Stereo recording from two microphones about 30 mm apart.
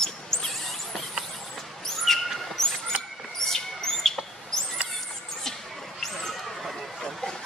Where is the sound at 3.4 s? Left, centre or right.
Centre.